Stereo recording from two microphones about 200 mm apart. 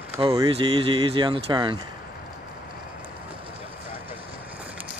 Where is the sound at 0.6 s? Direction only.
25° right (ahead or behind).